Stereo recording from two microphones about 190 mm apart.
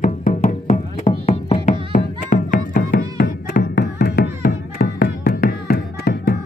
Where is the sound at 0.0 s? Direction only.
45° left (ahead or behind).